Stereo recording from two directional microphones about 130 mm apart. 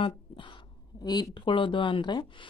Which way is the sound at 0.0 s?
40° left (ahead or behind).